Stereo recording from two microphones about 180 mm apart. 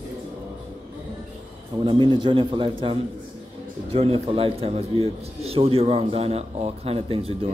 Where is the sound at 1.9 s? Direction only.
25° right (ahead or behind).